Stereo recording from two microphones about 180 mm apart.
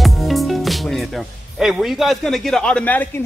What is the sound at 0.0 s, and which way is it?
Music, centre (ahead or behind).